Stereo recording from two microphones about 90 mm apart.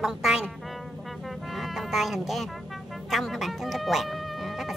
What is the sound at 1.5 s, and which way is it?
Cat, centre (ahead or behind).